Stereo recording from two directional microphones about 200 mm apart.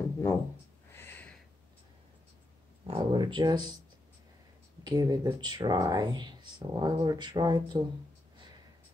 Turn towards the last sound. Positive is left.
turn(degrees=-20)  # may be behind; listen again after turning